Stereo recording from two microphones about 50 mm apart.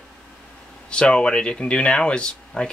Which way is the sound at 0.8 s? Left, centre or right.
Centre.